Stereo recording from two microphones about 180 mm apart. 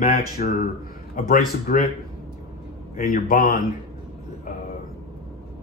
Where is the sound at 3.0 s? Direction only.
55° left (ahead or behind).